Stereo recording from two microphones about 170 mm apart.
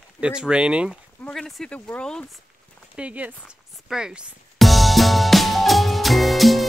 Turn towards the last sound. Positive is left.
turn(degrees=0)  # may be behind; listen again after turning